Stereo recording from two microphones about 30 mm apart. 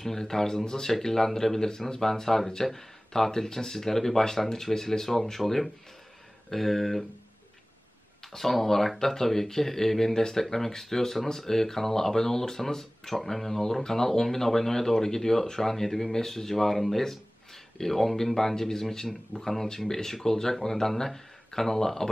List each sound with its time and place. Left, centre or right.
0.0 s speech: centre
8.3 s speech: centre